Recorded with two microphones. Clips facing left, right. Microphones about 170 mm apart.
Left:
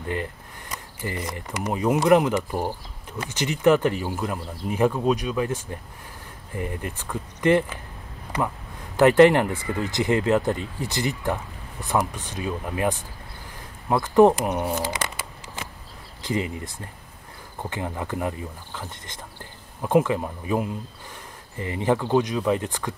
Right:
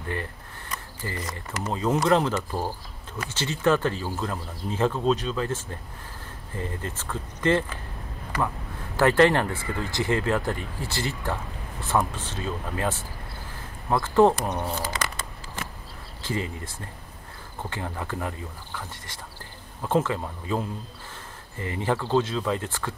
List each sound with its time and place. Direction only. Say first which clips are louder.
0.1 s speech: left 3 dB; 20° left (ahead or behind)
8.9 s speech: left 4 dB; 20° left (ahead or behind)